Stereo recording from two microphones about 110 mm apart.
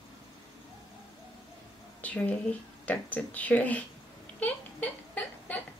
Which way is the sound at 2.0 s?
15° left (ahead or behind).